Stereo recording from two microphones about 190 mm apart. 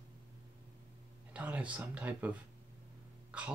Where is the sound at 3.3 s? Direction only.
5° right (ahead or behind).